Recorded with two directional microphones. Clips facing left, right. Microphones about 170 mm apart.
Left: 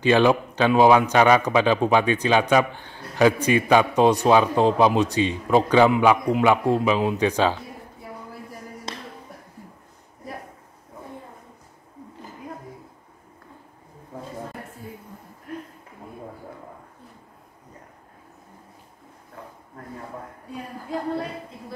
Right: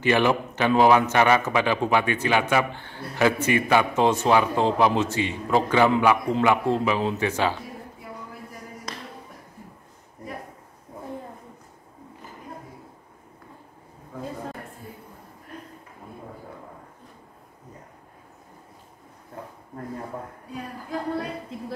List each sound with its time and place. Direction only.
0.0 s a man's voice: 15° left (ahead or behind)
8.9 s music: 25° left (ahead or behind)